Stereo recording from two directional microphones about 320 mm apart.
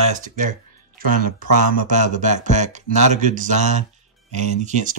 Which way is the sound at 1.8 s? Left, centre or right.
Right.